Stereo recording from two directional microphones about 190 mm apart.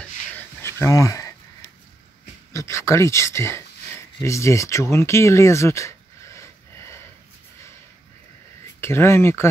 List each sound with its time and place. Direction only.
0.6 s a sound: 15° left (ahead or behind)
2.5 s speech: 15° left (ahead or behind)
8.8 s speech: 15° left (ahead or behind)